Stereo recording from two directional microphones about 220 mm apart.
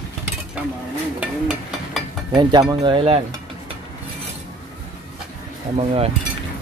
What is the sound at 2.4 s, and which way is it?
Speech, 20° right (ahead or behind).